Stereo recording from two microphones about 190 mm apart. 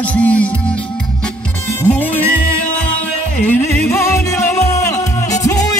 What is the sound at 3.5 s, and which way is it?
Music, 15° left (ahead or behind).